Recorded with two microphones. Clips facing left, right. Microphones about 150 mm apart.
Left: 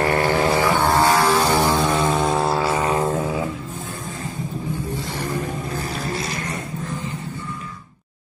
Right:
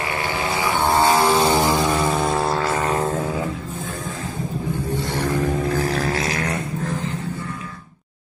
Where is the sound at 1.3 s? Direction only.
15° right (ahead or behind); by 3.2 s 5° left (ahead or behind).